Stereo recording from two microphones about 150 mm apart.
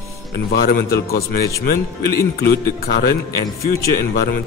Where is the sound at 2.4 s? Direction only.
90° left.